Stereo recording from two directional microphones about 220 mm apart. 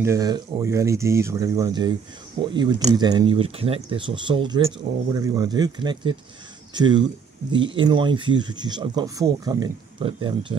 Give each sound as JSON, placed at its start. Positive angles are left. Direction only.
{"t": 0.0, "sound": "speech", "side_deg": -15}